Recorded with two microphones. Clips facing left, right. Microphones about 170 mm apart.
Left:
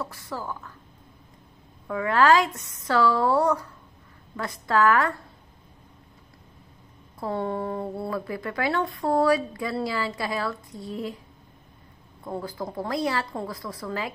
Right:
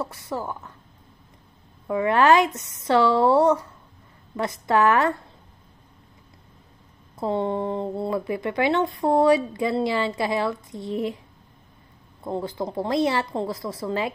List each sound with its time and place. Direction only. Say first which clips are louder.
0.0 s speech: right 4 dB; 20° right (ahead or behind)
1.9 s speech: right 2 dB; 20° right (ahead or behind)
4.6 s speech: right 2 dB; 20° right (ahead or behind)
7.2 s speech: right 4 dB; 20° right (ahead or behind)
12.3 s speech: right 4 dB; 25° right (ahead or behind)